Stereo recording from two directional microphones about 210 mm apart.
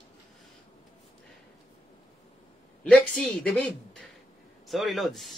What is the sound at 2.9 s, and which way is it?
A woman's voice, 5° left (ahead or behind).